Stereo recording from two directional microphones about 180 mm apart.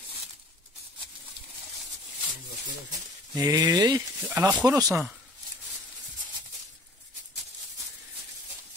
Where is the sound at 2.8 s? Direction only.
20° right (ahead or behind).